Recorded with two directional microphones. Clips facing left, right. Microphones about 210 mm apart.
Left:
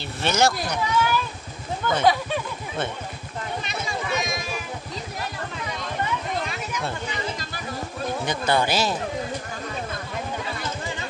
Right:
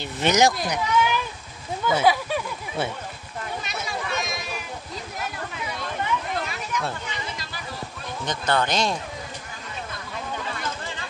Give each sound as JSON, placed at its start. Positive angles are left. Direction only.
{"t": 0.0, "sound": "speech", "side_deg": -15}
{"t": 3.6, "sound": "a sound", "side_deg": 0}
{"t": 6.3, "sound": "chatter", "side_deg": 0}
{"t": 8.3, "sound": "speech", "side_deg": 10}